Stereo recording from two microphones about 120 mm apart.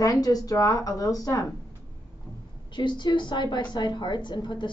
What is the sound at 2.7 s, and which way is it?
A woman's voice, 40° left (ahead or behind).